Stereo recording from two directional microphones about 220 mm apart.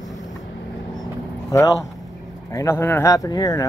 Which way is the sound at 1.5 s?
15° left (ahead or behind).